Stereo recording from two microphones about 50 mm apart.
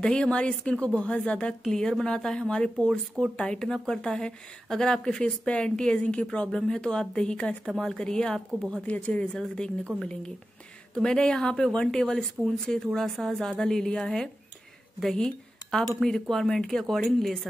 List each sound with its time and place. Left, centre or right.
0.0 s a woman's voice: centre
7.6 s a woman's voice: centre
8.8 s speech: left
9.9 s a woman's voice: centre